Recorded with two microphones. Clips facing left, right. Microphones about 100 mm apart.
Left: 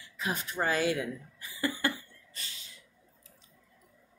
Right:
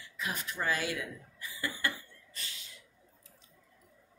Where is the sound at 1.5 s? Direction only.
35° left (ahead or behind).